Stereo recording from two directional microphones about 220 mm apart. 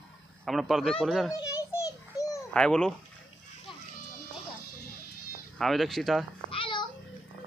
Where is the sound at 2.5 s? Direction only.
5° left (ahead or behind).